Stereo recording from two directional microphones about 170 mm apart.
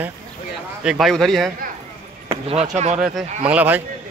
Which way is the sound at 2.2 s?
35° right (ahead or behind).